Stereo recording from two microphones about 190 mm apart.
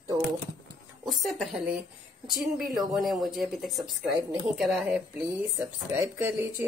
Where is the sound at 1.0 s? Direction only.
Centre (ahead or behind).